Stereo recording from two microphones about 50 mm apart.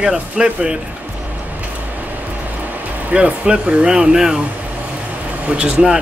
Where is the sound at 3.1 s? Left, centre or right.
Centre.